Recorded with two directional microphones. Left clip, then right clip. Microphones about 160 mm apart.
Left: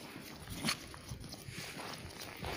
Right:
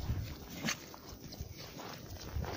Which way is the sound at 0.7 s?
25° right (ahead or behind).